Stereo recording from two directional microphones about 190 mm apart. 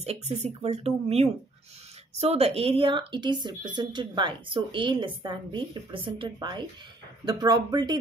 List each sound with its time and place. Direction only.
0.0 s speech: 35° right (ahead or behind)